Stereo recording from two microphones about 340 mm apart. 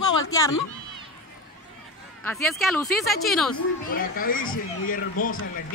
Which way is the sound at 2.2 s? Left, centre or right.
Centre.